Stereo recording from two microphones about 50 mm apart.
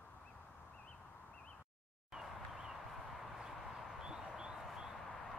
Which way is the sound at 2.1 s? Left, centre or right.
Centre.